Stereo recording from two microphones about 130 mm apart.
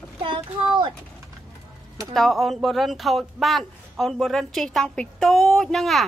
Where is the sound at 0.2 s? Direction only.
40° right (ahead or behind).